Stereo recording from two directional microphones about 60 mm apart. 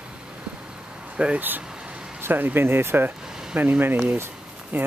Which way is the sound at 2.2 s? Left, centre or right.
Right.